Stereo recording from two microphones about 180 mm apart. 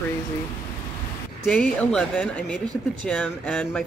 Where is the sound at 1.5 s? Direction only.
5° left (ahead or behind).